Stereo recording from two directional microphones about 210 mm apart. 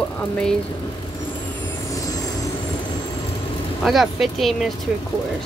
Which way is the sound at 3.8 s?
Centre (ahead or behind).